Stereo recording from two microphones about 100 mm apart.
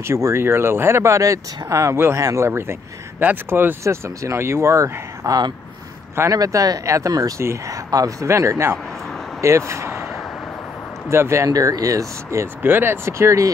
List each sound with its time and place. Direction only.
0.0 s speech: 30° right (ahead or behind)
11.1 s speech: 25° right (ahead or behind)